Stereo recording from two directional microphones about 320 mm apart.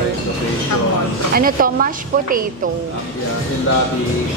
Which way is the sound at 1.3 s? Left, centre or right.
Right.